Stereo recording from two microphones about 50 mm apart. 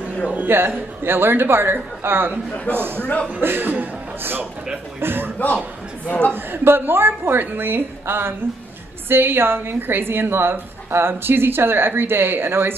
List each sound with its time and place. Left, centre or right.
0.5 s a woman's voice: right
5.0 s a woman's voice: right
6.3 s a woman's voice: right